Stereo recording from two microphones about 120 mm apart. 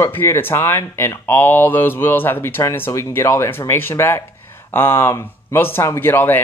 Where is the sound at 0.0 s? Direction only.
20° left (ahead or behind).